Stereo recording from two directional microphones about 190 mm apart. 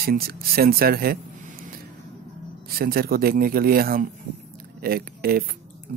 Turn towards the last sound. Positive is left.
turn(degrees=-50)  # may be behind; listen again after turning